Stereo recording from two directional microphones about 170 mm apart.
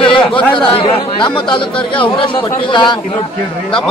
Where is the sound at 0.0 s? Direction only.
30° left (ahead or behind).